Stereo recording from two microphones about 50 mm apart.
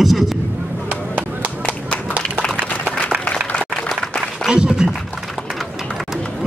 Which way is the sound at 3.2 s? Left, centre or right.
Left.